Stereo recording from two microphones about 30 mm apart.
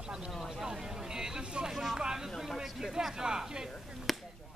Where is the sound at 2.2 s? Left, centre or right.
Centre.